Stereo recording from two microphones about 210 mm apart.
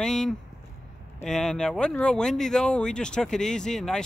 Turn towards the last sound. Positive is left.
turn(degrees=5)  # may be behind; listen again after turning